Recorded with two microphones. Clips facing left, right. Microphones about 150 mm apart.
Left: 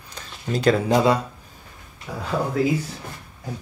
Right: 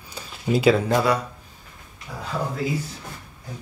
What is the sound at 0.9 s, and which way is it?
Speech, 20° left (ahead or behind).